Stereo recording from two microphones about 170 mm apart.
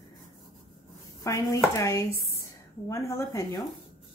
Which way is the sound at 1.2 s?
20° left (ahead or behind).